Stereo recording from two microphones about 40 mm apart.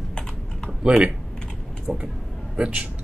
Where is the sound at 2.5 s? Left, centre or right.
Right.